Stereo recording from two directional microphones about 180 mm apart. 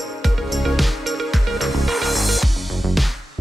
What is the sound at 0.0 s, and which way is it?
Music, centre (ahead or behind).